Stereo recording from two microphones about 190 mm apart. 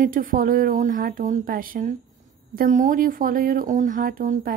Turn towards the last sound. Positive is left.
turn(degrees=-45)  # may be behind; listen again after turning